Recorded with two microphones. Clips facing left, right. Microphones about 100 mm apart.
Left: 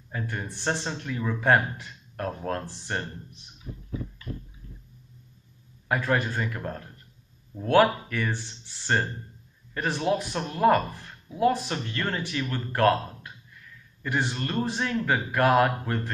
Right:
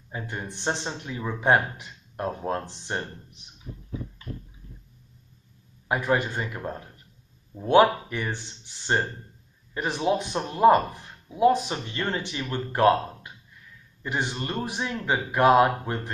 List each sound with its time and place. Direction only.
0.1 s speech: 20° right (ahead or behind)
5.9 s speech: 20° right (ahead or behind)